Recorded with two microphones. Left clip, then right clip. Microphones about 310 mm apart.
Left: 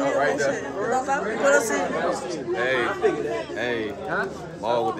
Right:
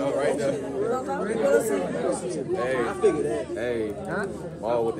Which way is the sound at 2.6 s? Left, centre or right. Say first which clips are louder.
Left 4 dB; left.